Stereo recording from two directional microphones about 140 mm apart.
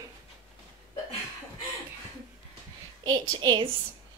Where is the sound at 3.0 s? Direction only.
30° right (ahead or behind).